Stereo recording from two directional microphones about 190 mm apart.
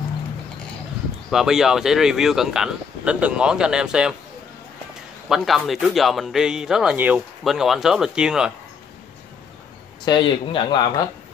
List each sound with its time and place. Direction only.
1.3 s speech: centre (ahead or behind)
5.3 s speech: centre (ahead or behind)
10.0 s speech: 25° left (ahead or behind)